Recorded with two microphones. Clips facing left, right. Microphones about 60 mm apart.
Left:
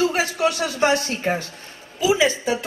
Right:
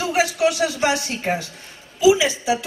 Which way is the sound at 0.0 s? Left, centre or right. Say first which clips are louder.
Right 1 dB; left.